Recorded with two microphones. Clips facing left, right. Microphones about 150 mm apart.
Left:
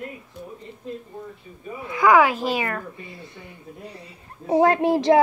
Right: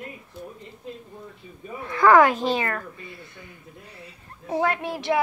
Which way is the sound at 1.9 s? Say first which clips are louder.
Right 1 dB; 10° left (ahead or behind).